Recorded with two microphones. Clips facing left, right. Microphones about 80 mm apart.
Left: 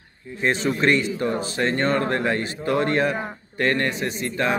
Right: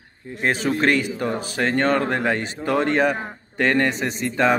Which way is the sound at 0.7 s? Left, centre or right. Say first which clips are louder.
Right 1 dB; right.